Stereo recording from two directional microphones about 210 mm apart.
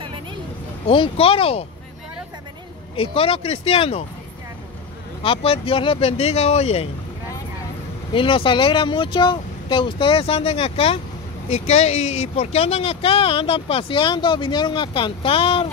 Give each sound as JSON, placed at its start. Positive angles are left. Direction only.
{"t": 0.8, "sound": "speech", "side_deg": 25}
{"t": 3.0, "sound": "speech", "side_deg": 25}
{"t": 5.2, "sound": "speech", "side_deg": 25}
{"t": 8.1, "sound": "speech", "side_deg": 25}